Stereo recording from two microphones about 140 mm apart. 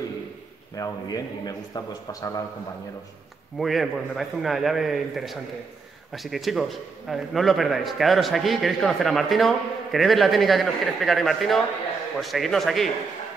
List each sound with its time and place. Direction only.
0.7 s a man's voice: 25° left (ahead or behind)
3.5 s a man's voice: centre (ahead or behind)